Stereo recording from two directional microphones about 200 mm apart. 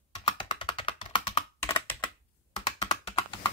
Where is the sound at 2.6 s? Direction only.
35° left (ahead or behind).